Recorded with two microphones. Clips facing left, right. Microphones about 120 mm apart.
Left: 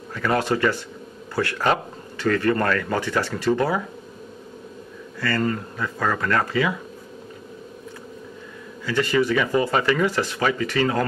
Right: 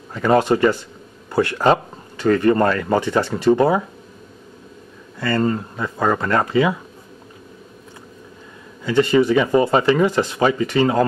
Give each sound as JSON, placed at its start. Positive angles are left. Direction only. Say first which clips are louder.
{"t": 0.1, "sound": "speech", "louder": "right 6 dB", "side_deg": -25}
{"t": 5.2, "sound": "speech", "louder": "right 4 dB", "side_deg": -25}
{"t": 8.8, "sound": "speech", "louder": "right 6 dB", "side_deg": -25}